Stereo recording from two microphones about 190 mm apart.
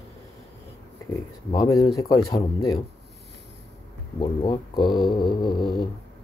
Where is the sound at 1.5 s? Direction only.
20° left (ahead or behind).